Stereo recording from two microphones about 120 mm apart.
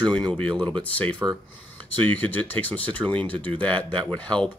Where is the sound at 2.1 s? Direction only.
15° left (ahead or behind).